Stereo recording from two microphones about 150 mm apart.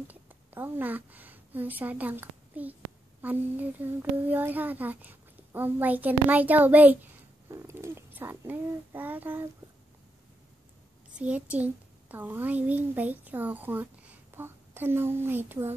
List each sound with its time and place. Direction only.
0.1 s a woman's voice: 10° right (ahead or behind)
11.1 s a child's voice: 10° right (ahead or behind)